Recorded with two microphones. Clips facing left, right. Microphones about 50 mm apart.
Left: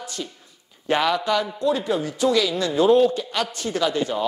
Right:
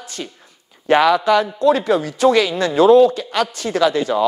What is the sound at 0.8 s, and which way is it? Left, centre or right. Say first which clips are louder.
A man's voice: right 7 dB; right.